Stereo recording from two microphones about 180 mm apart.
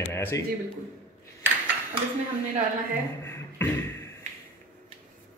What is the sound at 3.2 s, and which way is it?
Beatboxing, 10° left (ahead or behind).